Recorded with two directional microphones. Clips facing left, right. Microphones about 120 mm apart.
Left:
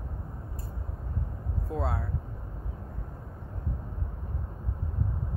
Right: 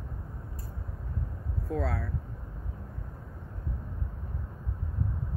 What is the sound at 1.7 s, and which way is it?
Speech, 25° left (ahead or behind).